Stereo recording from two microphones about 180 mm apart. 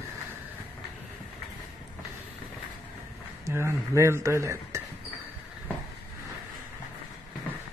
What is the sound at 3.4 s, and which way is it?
Speech, 15° right (ahead or behind).